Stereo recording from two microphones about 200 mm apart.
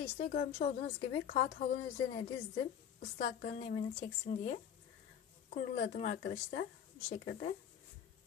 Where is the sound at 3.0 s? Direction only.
40° left (ahead or behind).